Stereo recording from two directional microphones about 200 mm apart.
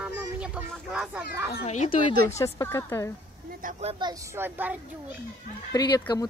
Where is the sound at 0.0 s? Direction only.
5° right (ahead or behind).